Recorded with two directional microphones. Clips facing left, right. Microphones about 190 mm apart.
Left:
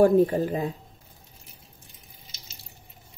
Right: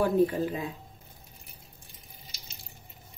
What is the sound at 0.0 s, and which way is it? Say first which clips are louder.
Speech: left 6 dB; 45° left (ahead or behind).